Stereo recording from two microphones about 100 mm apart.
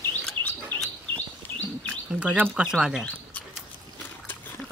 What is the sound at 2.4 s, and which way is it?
Speech, 10° right (ahead or behind).